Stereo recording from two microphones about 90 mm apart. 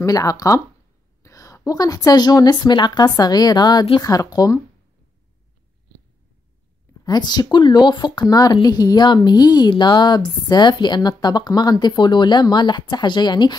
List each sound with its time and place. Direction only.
0.0 s a woman's voice: 40° left (ahead or behind)
7.1 s a woman's voice: 50° left (ahead or behind)